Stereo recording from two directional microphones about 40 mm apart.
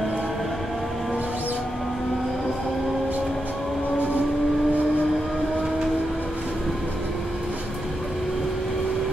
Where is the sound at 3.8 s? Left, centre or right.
Left.